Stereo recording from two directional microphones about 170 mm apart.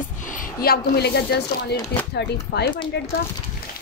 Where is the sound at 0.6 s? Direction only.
65° left (ahead or behind).